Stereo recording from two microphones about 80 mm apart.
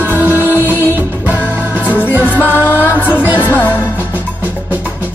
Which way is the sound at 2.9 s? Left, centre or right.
Left.